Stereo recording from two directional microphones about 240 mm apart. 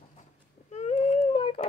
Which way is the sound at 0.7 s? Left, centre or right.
Left.